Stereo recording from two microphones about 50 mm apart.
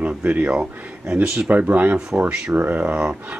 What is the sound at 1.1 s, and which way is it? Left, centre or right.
Speech, centre.